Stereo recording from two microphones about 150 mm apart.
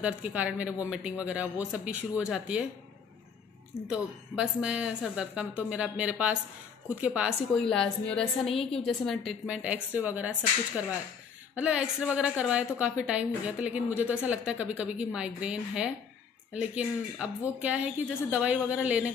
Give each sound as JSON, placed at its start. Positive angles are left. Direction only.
{"t": 0.0, "sound": "a woman's voice", "side_deg": -10}
{"t": 3.8, "sound": "a woman's voice", "side_deg": -5}
{"t": 7.7, "sound": "a woman's voice", "side_deg": 5}
{"t": 11.5, "sound": "a woman's voice", "side_deg": -10}